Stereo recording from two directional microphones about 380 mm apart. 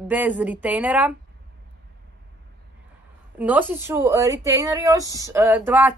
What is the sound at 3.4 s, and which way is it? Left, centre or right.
Speech, centre.